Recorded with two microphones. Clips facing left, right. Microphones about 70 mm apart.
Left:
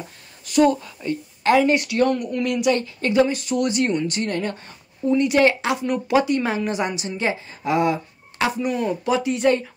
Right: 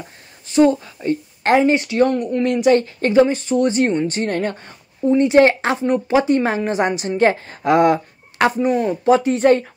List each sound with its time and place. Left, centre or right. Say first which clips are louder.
0.5 s a woman's voice: right 3 dB; right
1.6 s speech: right 3 dB; right